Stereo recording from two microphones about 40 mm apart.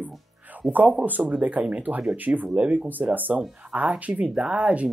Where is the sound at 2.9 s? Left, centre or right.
Right.